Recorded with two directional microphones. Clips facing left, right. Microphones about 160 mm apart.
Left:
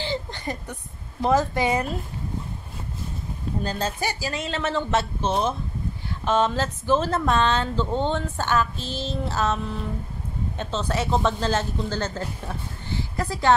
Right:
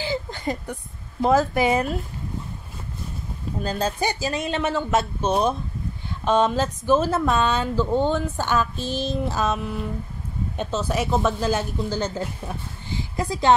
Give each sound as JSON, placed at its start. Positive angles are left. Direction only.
{"t": 0.0, "sound": "a sound", "side_deg": -10}
{"t": 1.2, "sound": "a woman's voice", "side_deg": -10}
{"t": 3.6, "sound": "a woman's voice", "side_deg": -10}